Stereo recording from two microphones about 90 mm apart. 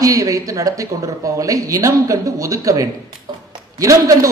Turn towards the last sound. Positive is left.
turn(degrees=-35)  # may be behind; listen again after turning